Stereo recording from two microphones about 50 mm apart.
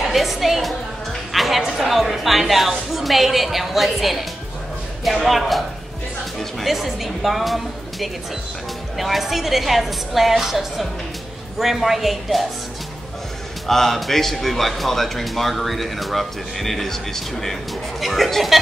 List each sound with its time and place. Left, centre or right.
0.0 s a woman's voice: centre
6.6 s a man's voice: centre
13.7 s a man's voice: centre